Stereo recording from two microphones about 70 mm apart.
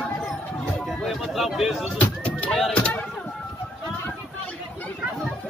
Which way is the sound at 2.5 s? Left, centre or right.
Centre.